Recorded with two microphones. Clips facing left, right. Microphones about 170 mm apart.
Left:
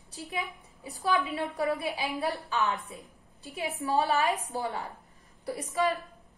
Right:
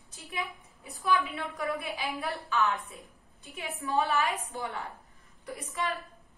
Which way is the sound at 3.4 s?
35° left (ahead or behind).